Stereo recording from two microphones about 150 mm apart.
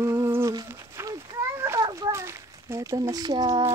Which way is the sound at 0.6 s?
20° right (ahead or behind).